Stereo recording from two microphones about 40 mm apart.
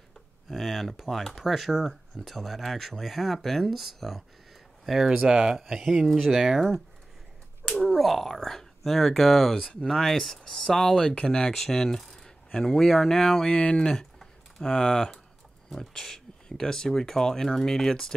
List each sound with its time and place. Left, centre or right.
0.5 s speech: centre
5.3 s speech: right
5.6 s speech: centre
7.9 s speech: centre
10.1 s speech: centre
13.5 s speech: left; by 18.1 s centre